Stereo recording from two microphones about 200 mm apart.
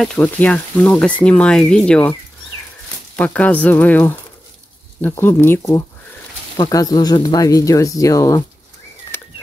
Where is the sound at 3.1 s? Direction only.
10° left (ahead or behind).